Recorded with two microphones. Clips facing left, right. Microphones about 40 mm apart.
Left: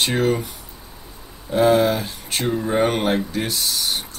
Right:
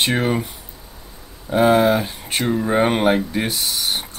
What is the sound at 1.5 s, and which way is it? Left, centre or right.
Speech, centre.